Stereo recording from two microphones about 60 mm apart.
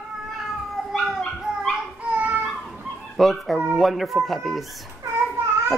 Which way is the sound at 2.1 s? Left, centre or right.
Right.